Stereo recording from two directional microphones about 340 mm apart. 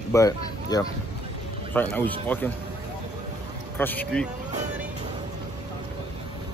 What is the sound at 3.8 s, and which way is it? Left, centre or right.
Speech, centre.